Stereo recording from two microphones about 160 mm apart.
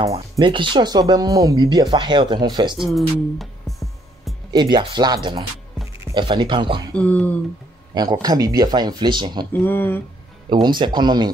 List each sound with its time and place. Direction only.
0.0 s speech: 35° right (ahead or behind)
2.9 s music: centre (ahead or behind)
4.5 s speech: 25° right (ahead or behind)
6.9 s a sound: 5° left (ahead or behind)
7.9 s speech: 25° right (ahead or behind)
9.5 s a sound: 15° left (ahead or behind)
10.5 s speech: 30° right (ahead or behind)